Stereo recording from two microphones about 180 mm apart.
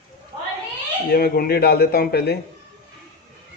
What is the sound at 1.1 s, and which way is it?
Speech, 55° left (ahead or behind).